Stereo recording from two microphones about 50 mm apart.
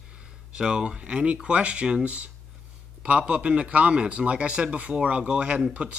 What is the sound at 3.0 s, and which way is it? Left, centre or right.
Speech, right.